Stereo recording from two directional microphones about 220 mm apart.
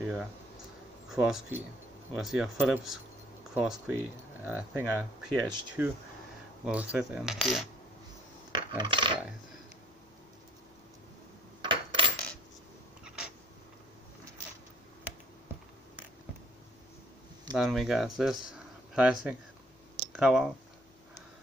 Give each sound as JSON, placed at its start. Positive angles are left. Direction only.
{"t": 0.0, "sound": "speech", "side_deg": -5}
{"t": 8.5, "sound": "coin", "side_deg": -20}
{"t": 11.6, "sound": "coin", "side_deg": -20}
{"t": 13.0, "sound": "cat", "side_deg": -5}
{"t": 17.6, "sound": "speech", "side_deg": 0}